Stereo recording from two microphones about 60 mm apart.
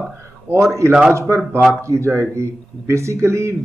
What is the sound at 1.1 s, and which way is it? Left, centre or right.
A man's voice, right.